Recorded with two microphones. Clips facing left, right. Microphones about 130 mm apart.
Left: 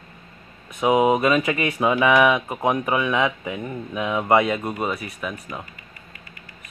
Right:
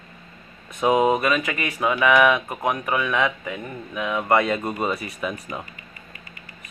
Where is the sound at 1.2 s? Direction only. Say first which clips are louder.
Left 3 dB; 25° left (ahead or behind); by 5.6 s centre (ahead or behind).